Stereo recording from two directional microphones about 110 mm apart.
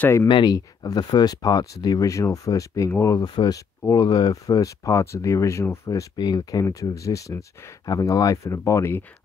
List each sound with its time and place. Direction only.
0.3 s speech: 40° left (ahead or behind); by 3.2 s 25° left (ahead or behind)
3.2 s speech: 35° left (ahead or behind)